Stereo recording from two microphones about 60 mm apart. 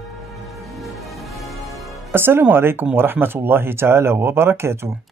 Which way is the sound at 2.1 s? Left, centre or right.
Right.